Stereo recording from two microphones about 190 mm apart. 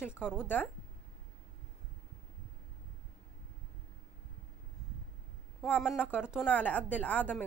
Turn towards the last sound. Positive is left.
turn(degrees=5)  # may be behind; listen again after turning